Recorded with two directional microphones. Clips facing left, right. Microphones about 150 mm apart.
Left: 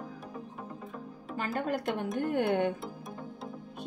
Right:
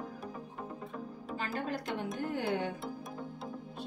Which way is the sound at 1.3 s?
50° left (ahead or behind).